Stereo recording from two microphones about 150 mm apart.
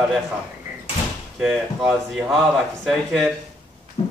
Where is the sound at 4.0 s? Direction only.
40° left (ahead or behind).